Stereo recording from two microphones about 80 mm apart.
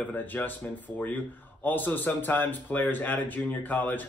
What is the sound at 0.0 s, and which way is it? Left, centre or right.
Speech, left.